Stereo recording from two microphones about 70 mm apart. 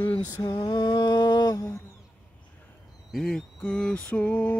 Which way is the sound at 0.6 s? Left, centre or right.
Left.